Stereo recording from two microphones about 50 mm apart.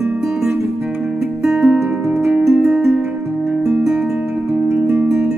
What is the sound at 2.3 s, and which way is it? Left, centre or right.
Music, right.